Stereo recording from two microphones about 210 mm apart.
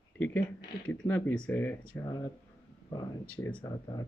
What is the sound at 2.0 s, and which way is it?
Speech, 20° left (ahead or behind).